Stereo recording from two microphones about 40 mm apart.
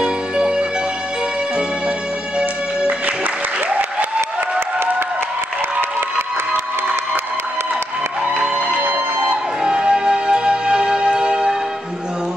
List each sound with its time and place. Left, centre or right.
0.0 s music: right
3.6 s applause: right
8.8 s music: right
9.6 s music: right